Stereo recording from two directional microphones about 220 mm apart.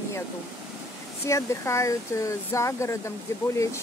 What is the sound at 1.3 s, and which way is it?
Speech, 15° left (ahead or behind).